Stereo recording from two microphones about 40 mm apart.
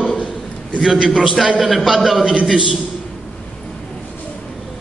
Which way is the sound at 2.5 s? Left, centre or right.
Centre.